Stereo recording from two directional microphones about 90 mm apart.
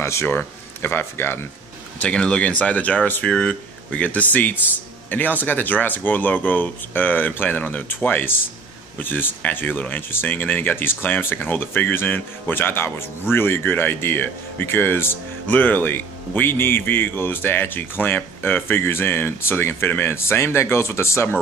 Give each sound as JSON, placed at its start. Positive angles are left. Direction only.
{"t": 0.0, "sound": "speech", "side_deg": 30}
{"t": 2.0, "sound": "speech", "side_deg": 10}